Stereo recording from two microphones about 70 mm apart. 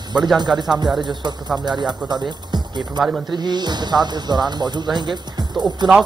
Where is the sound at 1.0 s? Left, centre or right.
Right.